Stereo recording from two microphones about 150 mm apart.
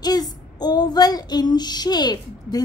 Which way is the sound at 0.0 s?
25° left (ahead or behind).